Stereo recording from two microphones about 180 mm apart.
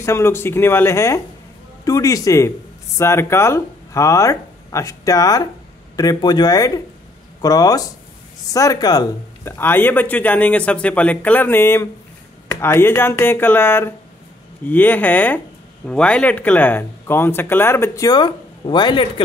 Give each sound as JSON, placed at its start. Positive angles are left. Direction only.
{"t": 0.0, "sound": "speech", "side_deg": 15}